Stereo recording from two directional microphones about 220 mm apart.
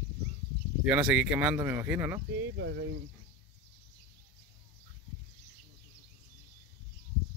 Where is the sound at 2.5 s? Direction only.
50° right (ahead or behind).